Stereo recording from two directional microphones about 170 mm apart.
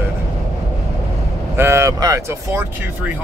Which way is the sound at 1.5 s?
15° right (ahead or behind).